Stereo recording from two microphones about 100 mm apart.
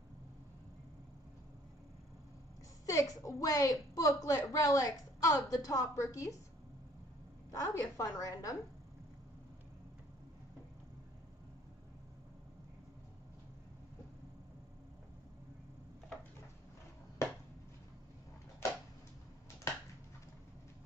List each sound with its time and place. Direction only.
2.9 s a woman's voice: 35° left (ahead or behind)
7.5 s a woman's voice: 35° left (ahead or behind)
17.2 s a sound: 30° left (ahead or behind)